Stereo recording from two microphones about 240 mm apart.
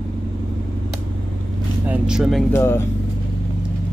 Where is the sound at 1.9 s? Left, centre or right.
Centre.